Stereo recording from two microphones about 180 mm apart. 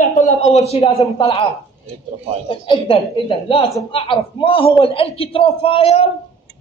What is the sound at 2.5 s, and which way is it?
A man's voice, 30° left (ahead or behind).